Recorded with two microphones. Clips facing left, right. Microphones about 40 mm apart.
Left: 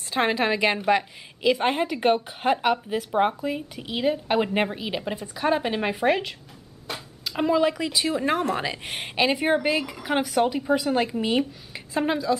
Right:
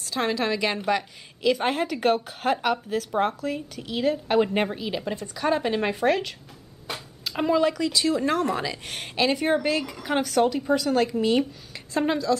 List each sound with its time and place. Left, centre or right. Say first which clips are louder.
0.0 s a woman's voice: left 2 dB; left; by 6.3 s centre
6.9 s a sound: even; centre
7.7 s a woman's voice: right 2 dB; centre